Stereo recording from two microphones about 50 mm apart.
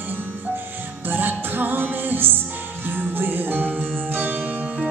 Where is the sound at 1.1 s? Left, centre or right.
Right.